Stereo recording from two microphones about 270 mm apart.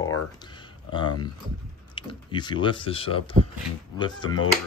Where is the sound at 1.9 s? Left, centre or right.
Centre.